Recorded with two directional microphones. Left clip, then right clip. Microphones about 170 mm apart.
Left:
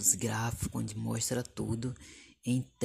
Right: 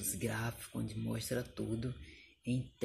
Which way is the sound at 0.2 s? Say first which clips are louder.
Left 5 dB; 40° left (ahead or behind).